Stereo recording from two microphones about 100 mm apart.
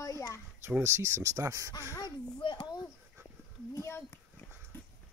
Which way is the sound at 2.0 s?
50° left (ahead or behind).